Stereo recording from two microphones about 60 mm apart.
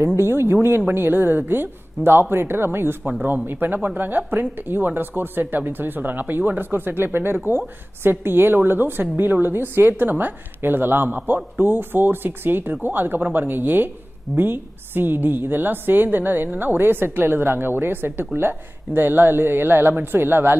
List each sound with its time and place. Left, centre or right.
0.0 s speech: right
3.1 s speech: right
11.1 s speech: right